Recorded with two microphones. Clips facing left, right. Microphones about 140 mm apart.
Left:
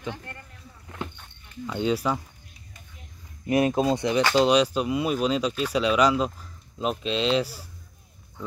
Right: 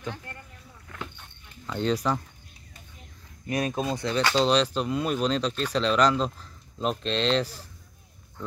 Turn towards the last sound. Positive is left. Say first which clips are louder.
# left 1 dB
turn(degrees=10)  # may be behind; listen again after turning